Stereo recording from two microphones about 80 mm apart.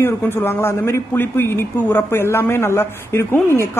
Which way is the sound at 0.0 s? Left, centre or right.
Left.